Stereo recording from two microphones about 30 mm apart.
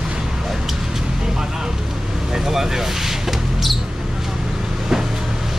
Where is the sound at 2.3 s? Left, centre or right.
Centre.